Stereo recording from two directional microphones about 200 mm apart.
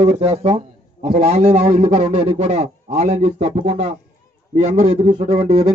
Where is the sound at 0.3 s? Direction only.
30° right (ahead or behind).